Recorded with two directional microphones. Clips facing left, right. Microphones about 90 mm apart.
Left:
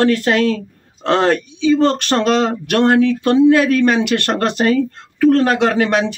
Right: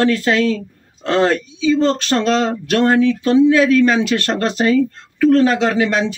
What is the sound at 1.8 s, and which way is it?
A man's voice, 60° left (ahead or behind).